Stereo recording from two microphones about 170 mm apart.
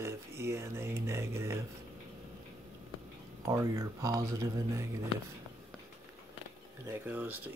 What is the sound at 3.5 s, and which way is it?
Speech, 20° right (ahead or behind).